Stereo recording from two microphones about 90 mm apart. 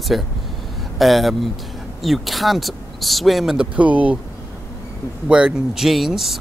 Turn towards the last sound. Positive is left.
turn(degrees=0)  # may be behind; listen again after turning